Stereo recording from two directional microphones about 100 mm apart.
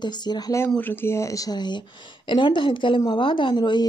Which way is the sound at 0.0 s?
45° left (ahead or behind).